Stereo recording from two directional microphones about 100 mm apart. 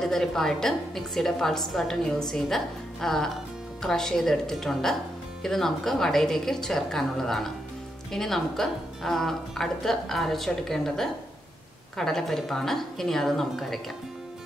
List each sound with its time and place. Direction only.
0.0 s a woman's voice: 5° left (ahead or behind)